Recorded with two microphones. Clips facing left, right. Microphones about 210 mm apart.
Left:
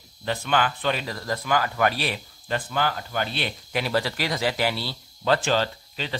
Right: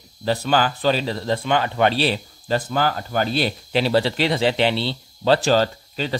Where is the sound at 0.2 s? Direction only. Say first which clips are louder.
Right 5 dB; 35° right (ahead or behind).